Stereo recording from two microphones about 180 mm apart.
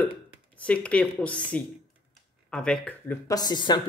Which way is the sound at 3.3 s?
25° left (ahead or behind).